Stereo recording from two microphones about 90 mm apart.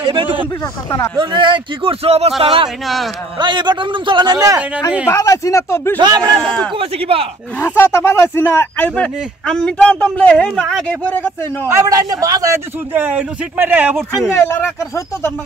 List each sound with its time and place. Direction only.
0.0 s a man's voice: 70° right (ahead or behind); by 2.7 s 90° right
3.3 s a man's voice: 60° right (ahead or behind)
5.0 s speech: 35° left (ahead or behind)
5.9 s speech: 50° right (ahead or behind)
6.8 s a man's voice: 90° right
7.5 s speech: 25° left (ahead or behind)
11.6 s a man's voice: 35° right (ahead or behind)
12.9 s a man's voice: 20° right (ahead or behind)
14.3 s speech: 25° left (ahead or behind)